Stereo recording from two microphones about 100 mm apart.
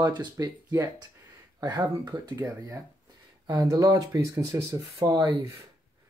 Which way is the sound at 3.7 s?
45° right (ahead or behind).